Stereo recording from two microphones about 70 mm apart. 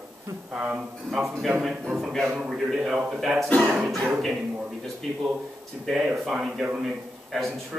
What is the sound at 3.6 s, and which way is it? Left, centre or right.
Speech, centre.